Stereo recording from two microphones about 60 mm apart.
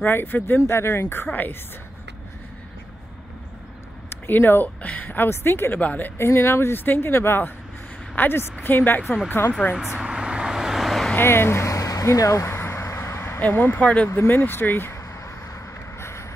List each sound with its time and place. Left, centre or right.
0.0 s speech: left
0.6 s speech: left
1.3 s speech: left
4.1 s speech: left
5.8 s a woman's voice: left
6.1 s a woman's voice: left
9.9 s vehicle: centre
11.1 s speech: left
12.5 s vehicle: left
13.4 s speech: left
16.0 s vehicle: left